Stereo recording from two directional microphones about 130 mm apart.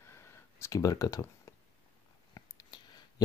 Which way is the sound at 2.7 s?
35° left (ahead or behind).